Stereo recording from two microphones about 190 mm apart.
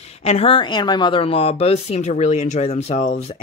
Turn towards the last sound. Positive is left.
turn(degrees=35)  # may be behind; listen again after turning